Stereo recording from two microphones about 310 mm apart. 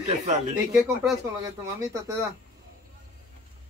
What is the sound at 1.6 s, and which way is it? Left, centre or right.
Speech, centre.